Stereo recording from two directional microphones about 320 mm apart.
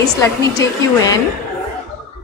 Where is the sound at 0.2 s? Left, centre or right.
Centre.